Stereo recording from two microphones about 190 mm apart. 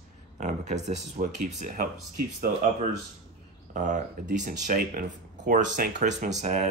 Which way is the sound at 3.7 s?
40° right (ahead or behind).